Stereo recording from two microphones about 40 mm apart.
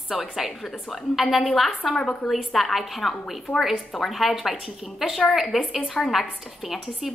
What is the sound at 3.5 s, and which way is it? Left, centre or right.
Speech, left.